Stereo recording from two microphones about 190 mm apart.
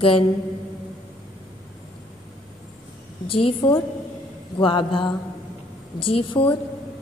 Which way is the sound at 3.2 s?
30° left (ahead or behind).